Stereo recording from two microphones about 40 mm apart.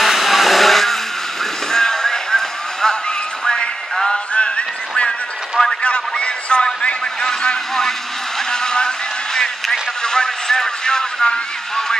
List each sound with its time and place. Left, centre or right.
0.0 s vehicle: centre
1.7 s music: centre
4.1 s music: left
5.8 s a sound: left
7.2 s vehicle: centre
8.5 s a sound: centre